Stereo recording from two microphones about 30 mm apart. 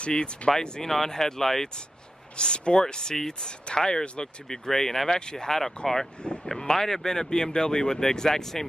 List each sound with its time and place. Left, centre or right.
0.5 s speech: centre
2.3 s speech: left; by 5.2 s centre
5.2 s speech: left
6.5 s speech: centre